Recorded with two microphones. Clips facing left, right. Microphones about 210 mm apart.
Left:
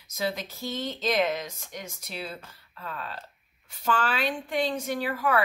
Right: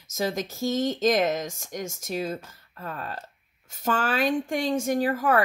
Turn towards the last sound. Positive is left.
turn(degrees=-45)  # may be behind; listen again after turning